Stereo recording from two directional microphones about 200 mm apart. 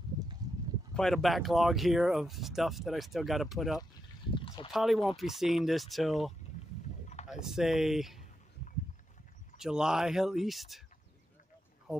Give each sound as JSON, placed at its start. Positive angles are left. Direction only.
{"t": 0.4, "sound": "a sound", "side_deg": -20}
{"t": 0.9, "sound": "speech", "side_deg": 0}
{"t": 9.6, "sound": "speech", "side_deg": -5}